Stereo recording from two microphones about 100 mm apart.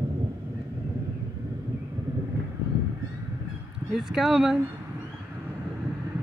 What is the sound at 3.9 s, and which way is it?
Speech, 5° right (ahead or behind).